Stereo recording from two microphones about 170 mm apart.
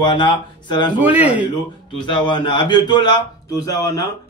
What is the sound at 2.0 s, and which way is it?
A man's voice, 30° left (ahead or behind).